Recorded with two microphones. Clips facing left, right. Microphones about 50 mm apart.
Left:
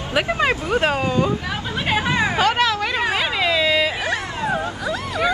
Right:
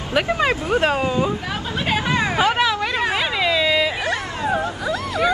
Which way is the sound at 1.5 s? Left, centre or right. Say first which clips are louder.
Even; left.